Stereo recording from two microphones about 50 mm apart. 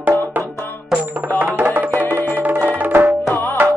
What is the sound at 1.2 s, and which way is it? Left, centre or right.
Music, right.